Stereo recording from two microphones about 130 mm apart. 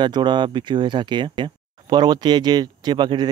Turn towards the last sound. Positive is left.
turn(degrees=-35)  # may be behind; listen again after turning